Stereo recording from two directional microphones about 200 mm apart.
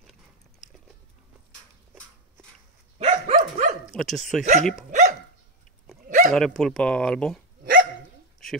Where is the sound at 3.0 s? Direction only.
30° right (ahead or behind).